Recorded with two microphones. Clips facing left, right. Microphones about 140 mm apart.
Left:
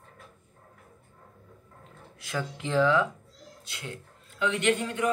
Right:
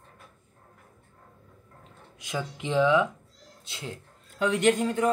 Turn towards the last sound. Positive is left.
turn(degrees=-35)  # may be behind; listen again after turning